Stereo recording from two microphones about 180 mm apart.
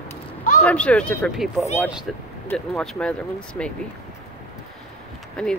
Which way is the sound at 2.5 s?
5° left (ahead or behind).